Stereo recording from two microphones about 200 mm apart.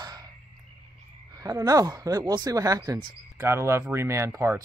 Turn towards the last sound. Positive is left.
turn(degrees=-15)  # may be behind; listen again after turning